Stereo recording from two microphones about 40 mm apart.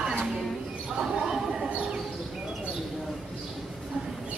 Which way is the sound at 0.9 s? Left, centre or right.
Centre.